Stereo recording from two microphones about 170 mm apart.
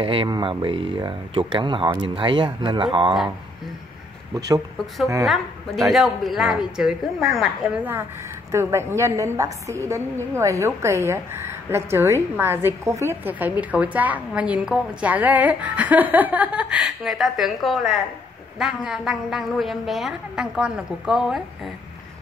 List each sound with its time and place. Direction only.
0.0 s speech: 30° right (ahead or behind)
5.2 s a woman's voice: centre (ahead or behind)
8.5 s a woman's voice: 15° right (ahead or behind)